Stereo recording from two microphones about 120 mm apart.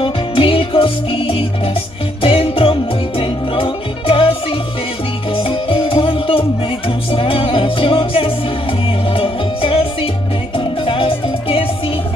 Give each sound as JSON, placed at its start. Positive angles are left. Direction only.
{"t": 0.0, "sound": "music", "side_deg": 50}